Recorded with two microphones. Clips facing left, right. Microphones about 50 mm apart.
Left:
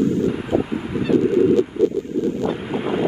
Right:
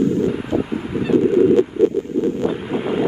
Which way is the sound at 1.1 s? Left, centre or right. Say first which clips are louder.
Right 2 dB; right.